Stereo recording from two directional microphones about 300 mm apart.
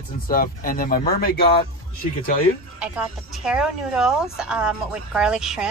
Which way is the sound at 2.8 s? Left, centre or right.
Centre.